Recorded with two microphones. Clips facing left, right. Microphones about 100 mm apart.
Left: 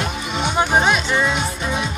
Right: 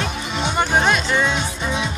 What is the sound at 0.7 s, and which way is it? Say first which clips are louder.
Speech: left 1 dB; 10° left (ahead or behind).